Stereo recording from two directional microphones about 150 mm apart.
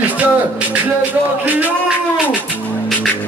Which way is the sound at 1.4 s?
10° right (ahead or behind).